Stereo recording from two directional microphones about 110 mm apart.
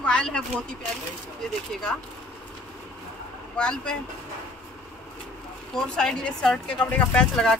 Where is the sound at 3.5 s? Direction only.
10° left (ahead or behind).